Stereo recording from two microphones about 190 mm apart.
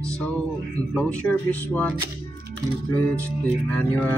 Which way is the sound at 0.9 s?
5° left (ahead or behind).